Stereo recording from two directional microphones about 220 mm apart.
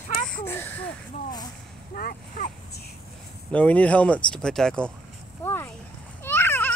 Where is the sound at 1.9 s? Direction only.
40° left (ahead or behind).